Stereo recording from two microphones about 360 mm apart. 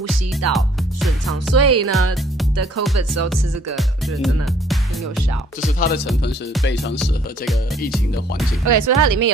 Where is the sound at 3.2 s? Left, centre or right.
Centre.